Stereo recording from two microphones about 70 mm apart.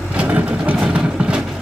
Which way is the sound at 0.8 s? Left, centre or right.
Centre.